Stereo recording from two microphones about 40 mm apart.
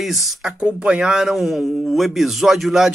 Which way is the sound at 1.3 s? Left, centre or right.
Centre.